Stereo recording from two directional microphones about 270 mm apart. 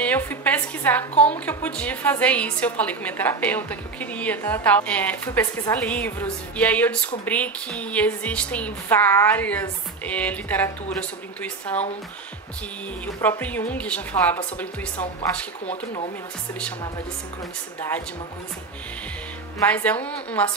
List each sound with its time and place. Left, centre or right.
0.0 s a woman's voice: centre
13.0 s a woman's voice: centre
15.6 s speech: left
17.7 s speech: centre
19.7 s a woman's voice: centre